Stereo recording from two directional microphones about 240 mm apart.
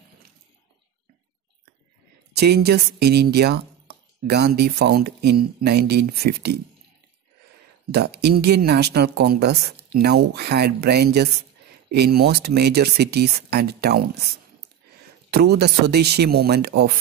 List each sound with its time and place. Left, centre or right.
2.3 s speech: right
7.9 s speech: right
15.3 s speech: right